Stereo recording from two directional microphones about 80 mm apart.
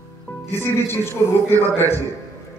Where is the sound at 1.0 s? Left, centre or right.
Left.